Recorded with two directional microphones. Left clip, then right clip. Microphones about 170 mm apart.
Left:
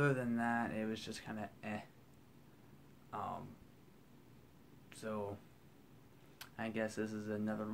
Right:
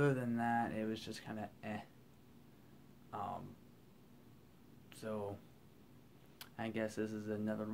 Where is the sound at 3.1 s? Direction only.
5° right (ahead or behind).